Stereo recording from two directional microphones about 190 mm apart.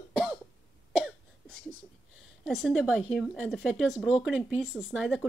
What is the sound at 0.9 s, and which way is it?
Cough, 5° right (ahead or behind).